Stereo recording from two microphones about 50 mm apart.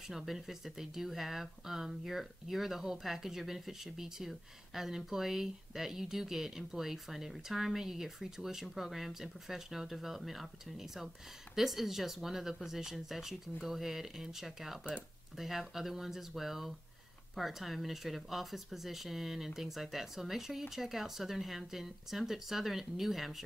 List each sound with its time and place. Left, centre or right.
0.1 s speech: centre